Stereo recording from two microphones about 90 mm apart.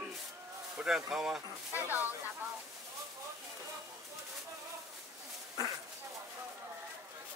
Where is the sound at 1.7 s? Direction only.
20° right (ahead or behind).